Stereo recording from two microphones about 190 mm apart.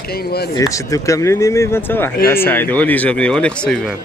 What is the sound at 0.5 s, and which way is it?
Speech, 20° left (ahead or behind).